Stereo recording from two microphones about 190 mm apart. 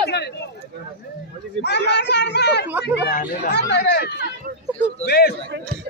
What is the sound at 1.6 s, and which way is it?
Speech, 65° left (ahead or behind).